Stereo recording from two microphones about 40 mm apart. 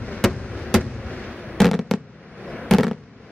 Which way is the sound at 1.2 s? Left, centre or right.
Centre.